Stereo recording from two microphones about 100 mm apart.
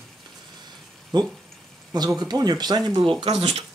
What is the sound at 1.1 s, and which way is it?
Speech, 45° right (ahead or behind).